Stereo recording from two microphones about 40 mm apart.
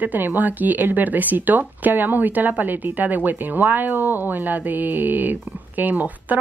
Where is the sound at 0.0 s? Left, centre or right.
Right.